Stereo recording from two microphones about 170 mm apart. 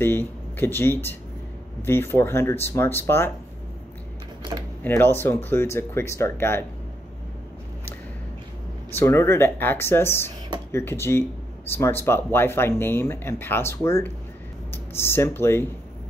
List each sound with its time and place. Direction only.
0.0 s speech: 10° left (ahead or behind)
4.4 s camera: 25° right (ahead or behind)
4.8 s speech: 10° left (ahead or behind)
8.9 s speech: 15° left (ahead or behind)